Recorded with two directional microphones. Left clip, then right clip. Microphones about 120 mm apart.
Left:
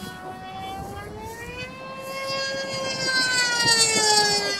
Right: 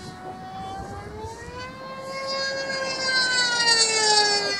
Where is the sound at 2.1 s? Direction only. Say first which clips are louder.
Even; 25° left (ahead or behind).